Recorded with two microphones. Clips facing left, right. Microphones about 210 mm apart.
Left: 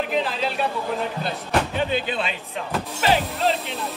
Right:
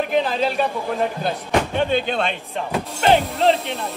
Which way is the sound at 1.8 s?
5° left (ahead or behind).